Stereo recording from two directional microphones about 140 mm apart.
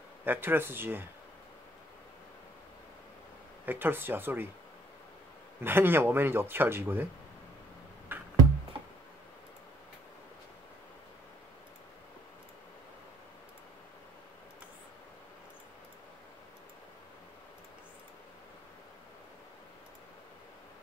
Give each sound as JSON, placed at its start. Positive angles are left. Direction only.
{"t": 0.2, "sound": "speech", "side_deg": -15}
{"t": 3.6, "sound": "speech", "side_deg": -15}
{"t": 5.6, "sound": "speech", "side_deg": -15}
{"t": 8.1, "sound": "music", "side_deg": -15}